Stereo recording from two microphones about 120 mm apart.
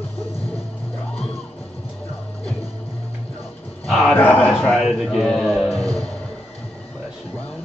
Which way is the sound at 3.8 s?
Centre (ahead or behind).